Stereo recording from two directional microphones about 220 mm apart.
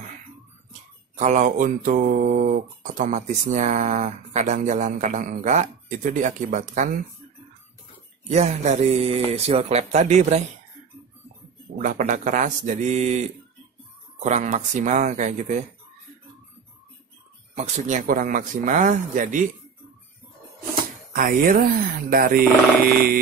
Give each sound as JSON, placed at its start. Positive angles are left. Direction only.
{"t": 1.1, "sound": "mantra", "side_deg": -35}
{"t": 8.3, "sound": "speech", "side_deg": -30}
{"t": 11.7, "sound": "mantra", "side_deg": -40}
{"t": 17.6, "sound": "mantra", "side_deg": -35}
{"t": 21.1, "sound": "mantra", "side_deg": -40}